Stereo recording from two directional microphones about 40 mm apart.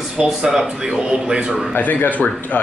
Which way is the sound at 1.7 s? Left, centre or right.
Left.